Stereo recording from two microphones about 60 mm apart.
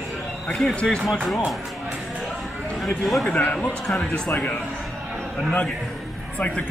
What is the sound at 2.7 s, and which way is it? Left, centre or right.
Speech, centre.